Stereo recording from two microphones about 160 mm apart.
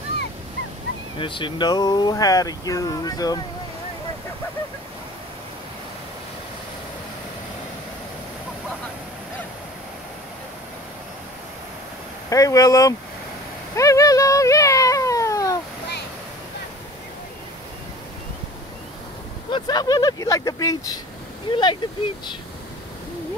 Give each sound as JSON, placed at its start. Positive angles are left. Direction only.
{"t": 1.1, "sound": "speech", "side_deg": 30}
{"t": 12.3, "sound": "speech", "side_deg": 20}
{"t": 13.7, "sound": "cat", "side_deg": 20}
{"t": 19.5, "sound": "speech", "side_deg": 25}